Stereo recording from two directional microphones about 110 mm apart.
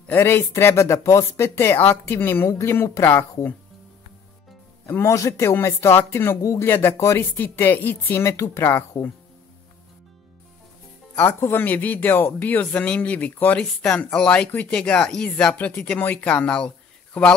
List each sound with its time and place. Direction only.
0.1 s speech: 20° left (ahead or behind)
4.8 s speech: 25° left (ahead or behind)
11.1 s speech: 20° left (ahead or behind)